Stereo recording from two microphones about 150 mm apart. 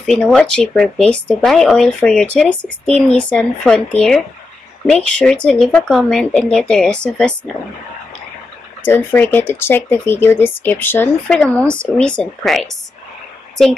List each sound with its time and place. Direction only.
0.0 s speech: 5° left (ahead or behind)
8.8 s speech: 15° left (ahead or behind)